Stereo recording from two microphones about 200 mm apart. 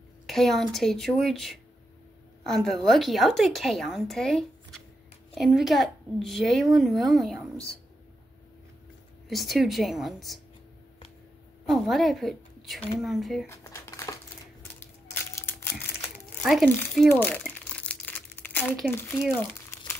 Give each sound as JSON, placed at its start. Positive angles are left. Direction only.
{"t": 0.3, "sound": "a woman's voice", "side_deg": 0}
{"t": 9.3, "sound": "a woman's voice", "side_deg": 0}
{"t": 11.6, "sound": "a woman's voice", "side_deg": 0}
{"t": 13.5, "sound": "a sound", "side_deg": 15}
{"t": 15.3, "sound": "crumpling", "side_deg": 10}
{"t": 16.4, "sound": "a woman's voice", "side_deg": 0}
{"t": 16.7, "sound": "speech", "side_deg": 10}
{"t": 17.2, "sound": "crumpling", "side_deg": 10}
{"t": 19.7, "sound": "a sound", "side_deg": 15}